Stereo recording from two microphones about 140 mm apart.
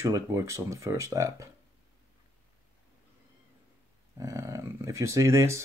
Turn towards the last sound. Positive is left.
turn(degrees=-20)  # may be behind; listen again after turning